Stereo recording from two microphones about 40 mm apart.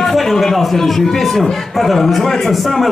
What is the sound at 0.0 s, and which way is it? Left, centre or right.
A man's voice, centre.